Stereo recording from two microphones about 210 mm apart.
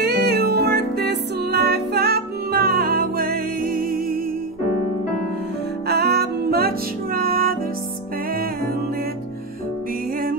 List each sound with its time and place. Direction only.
0.0 s music: 50° right (ahead or behind)
5.9 s music: 50° right (ahead or behind)